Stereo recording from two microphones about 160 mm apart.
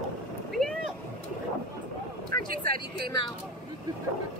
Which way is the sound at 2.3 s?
65° right (ahead or behind).